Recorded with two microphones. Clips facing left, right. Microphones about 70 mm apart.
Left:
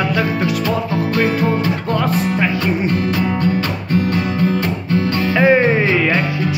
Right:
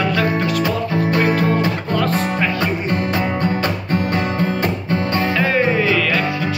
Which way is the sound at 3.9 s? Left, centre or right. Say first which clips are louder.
Left 4 dB; right.